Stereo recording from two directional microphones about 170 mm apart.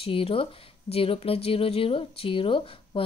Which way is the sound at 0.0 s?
35° left (ahead or behind).